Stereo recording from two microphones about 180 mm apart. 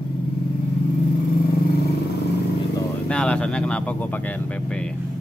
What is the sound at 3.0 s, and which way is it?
Speech, 5° left (ahead or behind).